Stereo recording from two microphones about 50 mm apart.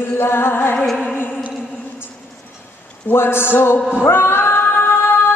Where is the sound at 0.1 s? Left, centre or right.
Left.